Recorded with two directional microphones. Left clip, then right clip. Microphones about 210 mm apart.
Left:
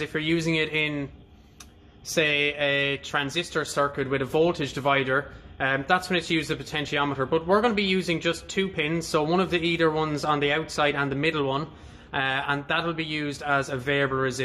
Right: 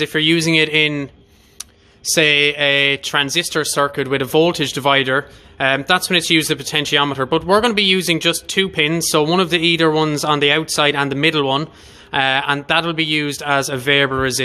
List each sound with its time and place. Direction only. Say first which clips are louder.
0.0 s speech: right 11 dB; 55° right (ahead or behind)
2.0 s speech: right 10 dB; 50° right (ahead or behind)